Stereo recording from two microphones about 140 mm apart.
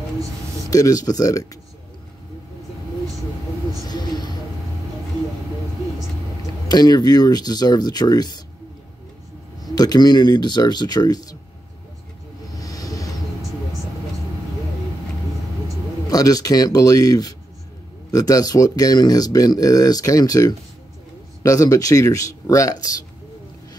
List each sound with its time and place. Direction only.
0.7 s speech: 25° left (ahead or behind)
3.8 s a sound: 30° left (ahead or behind)
6.7 s speech: 30° left (ahead or behind)
9.6 s speech: 30° left (ahead or behind)
12.5 s vehicle: 25° left (ahead or behind)
16.1 s speech: 25° left (ahead or behind)